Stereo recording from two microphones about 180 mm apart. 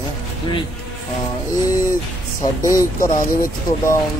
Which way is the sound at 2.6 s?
15° left (ahead or behind).